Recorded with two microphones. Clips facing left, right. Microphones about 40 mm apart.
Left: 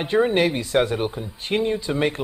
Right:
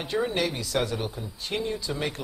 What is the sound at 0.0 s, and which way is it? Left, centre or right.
Speech, left.